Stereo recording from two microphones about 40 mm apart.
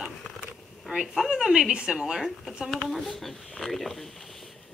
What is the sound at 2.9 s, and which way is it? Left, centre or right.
Speech, centre.